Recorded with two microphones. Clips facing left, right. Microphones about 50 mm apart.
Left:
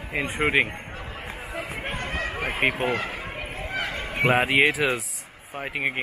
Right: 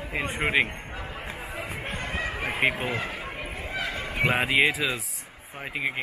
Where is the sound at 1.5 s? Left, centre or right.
Centre.